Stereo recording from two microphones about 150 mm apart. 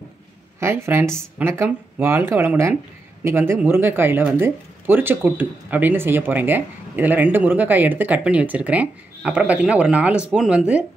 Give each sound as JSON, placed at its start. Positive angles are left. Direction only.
{"t": 0.6, "sound": "speech", "side_deg": -15}